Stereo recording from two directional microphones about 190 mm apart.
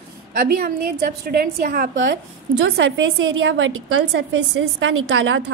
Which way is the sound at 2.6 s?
80° right.